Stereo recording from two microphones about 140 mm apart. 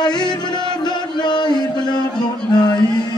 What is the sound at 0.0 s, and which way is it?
Music, 30° left (ahead or behind).